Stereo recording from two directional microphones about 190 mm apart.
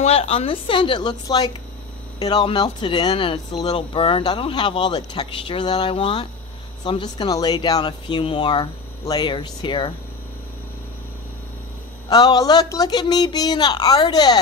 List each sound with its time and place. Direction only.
0.0 s speech: 30° left (ahead or behind)
12.1 s speech: 20° left (ahead or behind)